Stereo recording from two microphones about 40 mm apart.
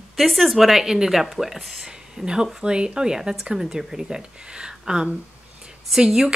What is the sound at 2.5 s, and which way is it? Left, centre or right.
Speech, right.